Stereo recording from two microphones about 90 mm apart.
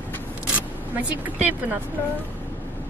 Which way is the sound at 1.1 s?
20° right (ahead or behind).